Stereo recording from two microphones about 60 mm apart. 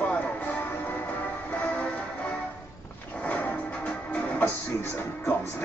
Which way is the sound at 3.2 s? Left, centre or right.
Left.